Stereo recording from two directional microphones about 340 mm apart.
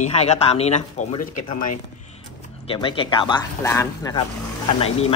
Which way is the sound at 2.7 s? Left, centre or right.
Centre.